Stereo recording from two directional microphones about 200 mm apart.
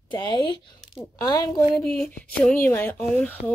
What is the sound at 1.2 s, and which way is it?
Speech, 20° left (ahead or behind).